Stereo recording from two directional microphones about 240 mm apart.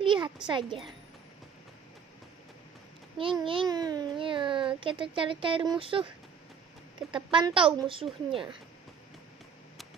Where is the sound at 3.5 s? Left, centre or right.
Centre.